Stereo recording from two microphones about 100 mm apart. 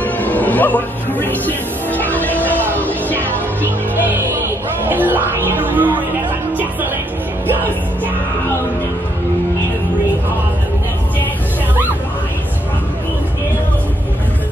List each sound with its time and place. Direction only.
0.0 s music: 15° left (ahead or behind)
4.8 s music: 20° right (ahead or behind)